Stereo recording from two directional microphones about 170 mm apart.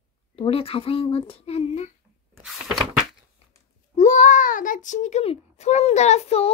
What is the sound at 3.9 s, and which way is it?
A child's voice, 45° left (ahead or behind).